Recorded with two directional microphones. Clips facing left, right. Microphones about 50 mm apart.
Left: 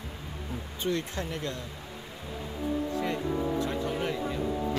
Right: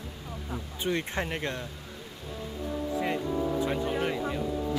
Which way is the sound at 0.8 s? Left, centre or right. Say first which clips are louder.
Right 1 dB; right.